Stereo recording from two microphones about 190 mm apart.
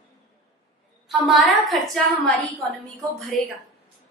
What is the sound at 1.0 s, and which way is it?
Speech, centre (ahead or behind).